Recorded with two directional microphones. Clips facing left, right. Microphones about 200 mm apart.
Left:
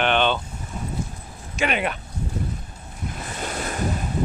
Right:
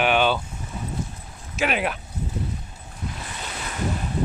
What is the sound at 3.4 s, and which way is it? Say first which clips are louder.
Waves: left 6 dB; 45° left (ahead or behind).